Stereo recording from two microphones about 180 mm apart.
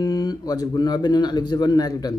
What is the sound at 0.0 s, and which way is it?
A man's voice, 20° left (ahead or behind).